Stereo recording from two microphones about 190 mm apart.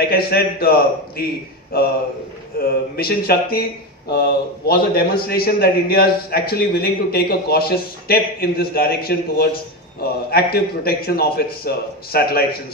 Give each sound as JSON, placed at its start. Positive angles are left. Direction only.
{"t": 0.0, "sound": "a man's voice", "side_deg": 55}